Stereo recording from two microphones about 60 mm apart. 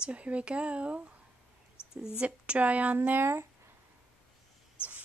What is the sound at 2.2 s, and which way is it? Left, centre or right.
Speech, right.